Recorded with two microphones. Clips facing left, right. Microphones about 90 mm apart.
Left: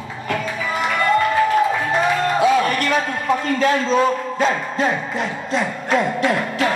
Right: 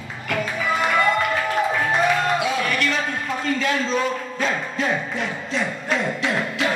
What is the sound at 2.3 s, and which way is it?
Music, 40° left (ahead or behind).